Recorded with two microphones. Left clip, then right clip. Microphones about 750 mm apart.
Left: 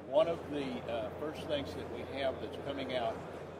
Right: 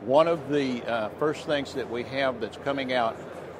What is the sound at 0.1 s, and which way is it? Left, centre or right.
Speech, right.